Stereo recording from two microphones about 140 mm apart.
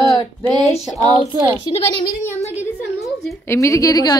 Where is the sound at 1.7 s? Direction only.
45° left (ahead or behind).